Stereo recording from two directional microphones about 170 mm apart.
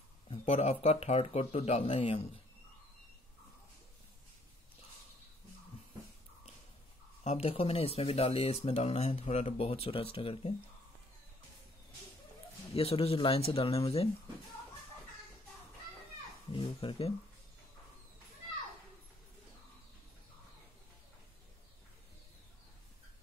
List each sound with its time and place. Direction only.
0.3 s speech: 35° left (ahead or behind)
7.2 s speech: 35° left (ahead or behind)
12.7 s speech: 35° left (ahead or behind)
16.5 s speech: 30° left (ahead or behind)